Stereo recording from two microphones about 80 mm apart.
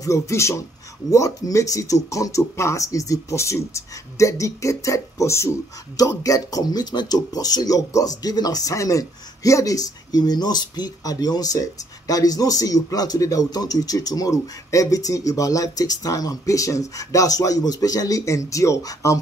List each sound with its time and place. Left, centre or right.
0.0 s speech: left